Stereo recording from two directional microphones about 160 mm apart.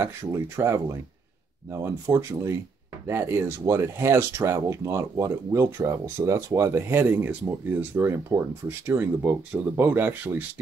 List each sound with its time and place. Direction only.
0.0 s speech: 15° right (ahead or behind)